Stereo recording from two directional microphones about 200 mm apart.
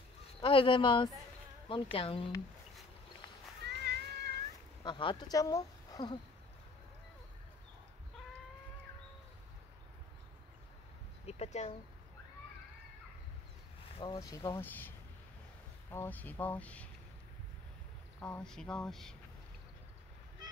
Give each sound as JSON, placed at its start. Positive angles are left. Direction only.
{"t": 0.4, "sound": "speech", "side_deg": 25}
{"t": 3.6, "sound": "cat", "side_deg": -55}
{"t": 4.8, "sound": "speech", "side_deg": 25}
{"t": 11.2, "sound": "speech", "side_deg": 30}
{"t": 13.9, "sound": "speech", "side_deg": 20}
{"t": 18.2, "sound": "speech", "side_deg": 5}